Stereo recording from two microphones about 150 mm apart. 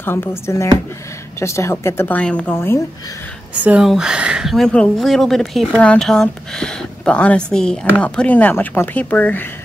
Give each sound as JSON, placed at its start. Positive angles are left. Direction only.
{"t": 0.0, "sound": "speech", "side_deg": 15}
{"t": 3.6, "sound": "speech", "side_deg": -5}